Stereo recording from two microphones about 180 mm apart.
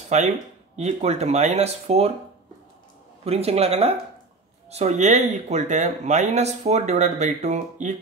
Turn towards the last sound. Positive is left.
turn(degrees=-40)  # may be behind; listen again after turning